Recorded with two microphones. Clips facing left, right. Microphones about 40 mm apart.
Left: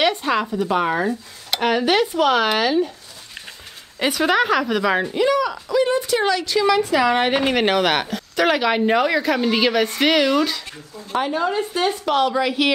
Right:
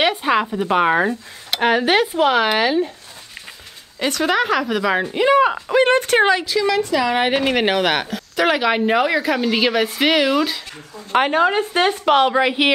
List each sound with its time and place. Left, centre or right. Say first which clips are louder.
0.0 s speech: right 2 dB; centre
4.0 s a woman's voice: even; centre
5.3 s speech: right 5 dB; right
6.4 s a woman's voice: left 1 dB; centre
11.1 s a woman's voice: right 5 dB; right